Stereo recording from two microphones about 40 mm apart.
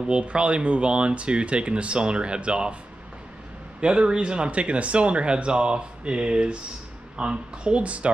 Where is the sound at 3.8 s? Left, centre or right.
Right.